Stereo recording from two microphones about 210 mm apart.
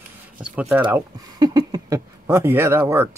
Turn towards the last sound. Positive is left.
turn(degrees=-10)  # may be behind; listen again after turning